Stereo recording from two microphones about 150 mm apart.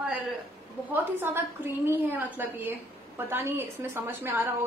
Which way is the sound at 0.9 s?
15° right (ahead or behind).